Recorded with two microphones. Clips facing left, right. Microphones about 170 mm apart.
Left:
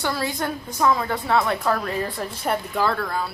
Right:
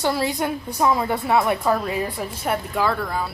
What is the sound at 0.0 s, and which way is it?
Speech, 20° right (ahead or behind).